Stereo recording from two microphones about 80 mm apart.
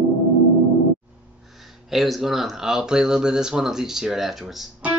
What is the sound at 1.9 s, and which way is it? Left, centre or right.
Speech, centre.